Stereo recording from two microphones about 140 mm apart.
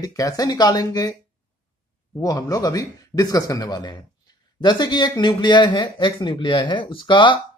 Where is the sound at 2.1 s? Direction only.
25° left (ahead or behind).